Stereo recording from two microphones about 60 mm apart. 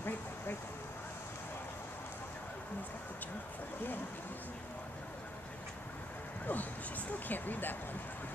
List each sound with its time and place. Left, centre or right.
6.4 s speech: left